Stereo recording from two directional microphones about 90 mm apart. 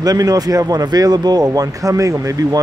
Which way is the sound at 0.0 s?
40° right (ahead or behind).